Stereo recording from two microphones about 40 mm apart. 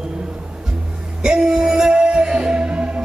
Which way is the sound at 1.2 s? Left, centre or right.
Centre.